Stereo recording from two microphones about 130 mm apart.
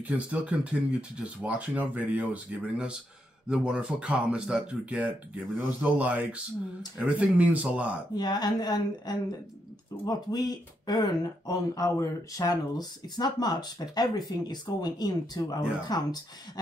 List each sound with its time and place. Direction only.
0.0 s speech: 10° right (ahead or behind)
8.1 s speech: 30° left (ahead or behind)